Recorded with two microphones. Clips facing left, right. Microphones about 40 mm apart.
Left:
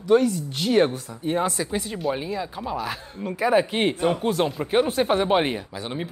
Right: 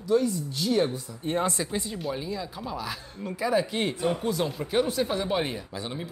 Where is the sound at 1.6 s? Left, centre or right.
Centre.